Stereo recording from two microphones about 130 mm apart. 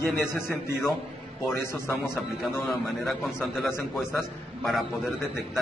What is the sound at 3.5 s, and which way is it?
Speech, 20° left (ahead or behind).